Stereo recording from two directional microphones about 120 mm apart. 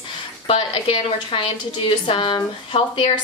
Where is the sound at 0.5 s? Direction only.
50° left (ahead or behind).